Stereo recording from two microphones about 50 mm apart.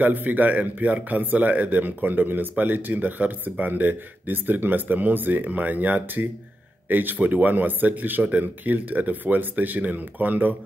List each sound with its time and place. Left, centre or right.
0.0 s speech: right